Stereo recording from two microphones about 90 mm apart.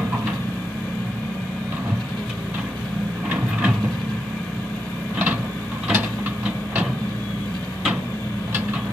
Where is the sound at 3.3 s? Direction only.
15° right (ahead or behind).